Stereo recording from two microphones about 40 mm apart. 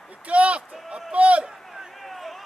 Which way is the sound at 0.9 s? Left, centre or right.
Centre.